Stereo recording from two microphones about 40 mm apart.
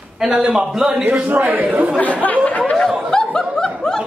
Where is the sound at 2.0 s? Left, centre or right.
Left.